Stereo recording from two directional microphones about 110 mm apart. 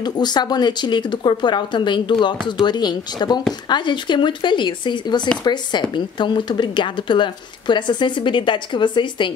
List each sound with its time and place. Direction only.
0.0 s speech: 40° left (ahead or behind)